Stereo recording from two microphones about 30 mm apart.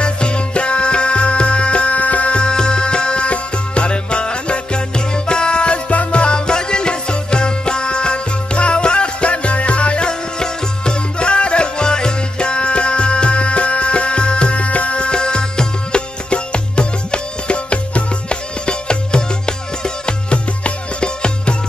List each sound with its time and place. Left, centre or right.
0.0 s music: left
2.3 s music: left
5.9 s music: left
6.2 s music: left